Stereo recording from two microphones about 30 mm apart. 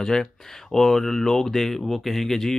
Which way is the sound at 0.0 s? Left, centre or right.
Centre.